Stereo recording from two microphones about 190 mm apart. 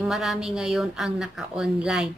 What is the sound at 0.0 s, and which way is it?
Speech, centre (ahead or behind).